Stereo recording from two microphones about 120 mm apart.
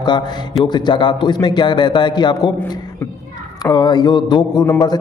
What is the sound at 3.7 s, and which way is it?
A man's voice, 35° left (ahead or behind).